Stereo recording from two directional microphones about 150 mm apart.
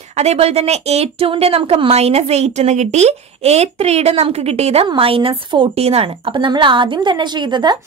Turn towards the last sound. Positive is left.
turn(degrees=-30)  # may be behind; listen again after turning